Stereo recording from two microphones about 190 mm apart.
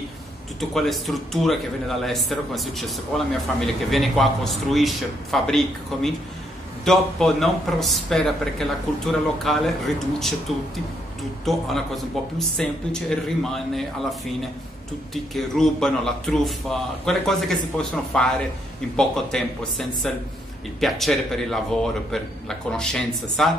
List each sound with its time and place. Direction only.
0.6 s a man's voice: centre (ahead or behind)
11.4 s a man's voice: centre (ahead or behind)
15.3 s a man's voice: centre (ahead or behind)